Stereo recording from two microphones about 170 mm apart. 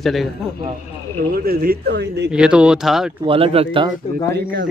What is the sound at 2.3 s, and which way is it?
Speech, 5° right (ahead or behind).